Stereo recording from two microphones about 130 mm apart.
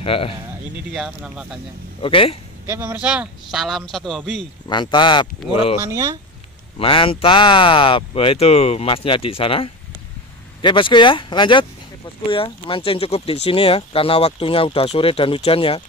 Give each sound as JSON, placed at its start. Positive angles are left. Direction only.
{"t": 0.0, "sound": "a man's voice", "side_deg": 45}
{"t": 0.9, "sound": "speech", "side_deg": -5}
{"t": 2.0, "sound": "speech", "side_deg": 45}
{"t": 2.7, "sound": "speech", "side_deg": -15}
{"t": 4.6, "sound": "speech", "side_deg": 35}
{"t": 5.9, "sound": "speech", "side_deg": -30}
{"t": 6.8, "sound": "speech", "side_deg": 45}